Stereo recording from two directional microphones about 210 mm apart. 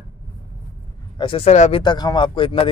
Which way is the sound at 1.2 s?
25° left (ahead or behind).